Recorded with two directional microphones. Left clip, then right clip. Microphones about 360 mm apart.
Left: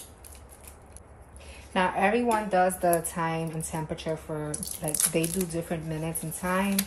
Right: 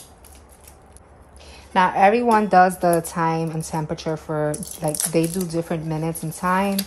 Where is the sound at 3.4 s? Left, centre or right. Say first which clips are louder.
Right 7 dB; right.